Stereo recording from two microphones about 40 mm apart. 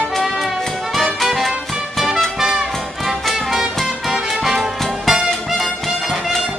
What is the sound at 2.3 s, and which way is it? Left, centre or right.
Music, centre.